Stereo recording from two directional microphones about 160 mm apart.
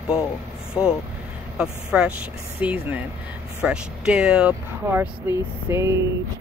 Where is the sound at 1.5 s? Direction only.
5° right (ahead or behind).